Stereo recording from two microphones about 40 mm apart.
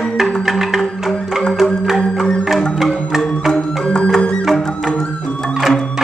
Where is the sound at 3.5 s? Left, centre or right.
Centre.